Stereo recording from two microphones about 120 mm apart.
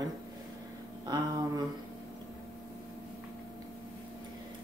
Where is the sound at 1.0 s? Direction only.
30° right (ahead or behind).